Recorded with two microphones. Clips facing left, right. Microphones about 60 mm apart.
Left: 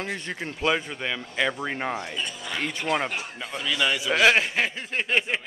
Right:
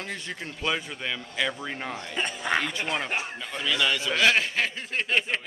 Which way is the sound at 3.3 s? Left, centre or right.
Centre.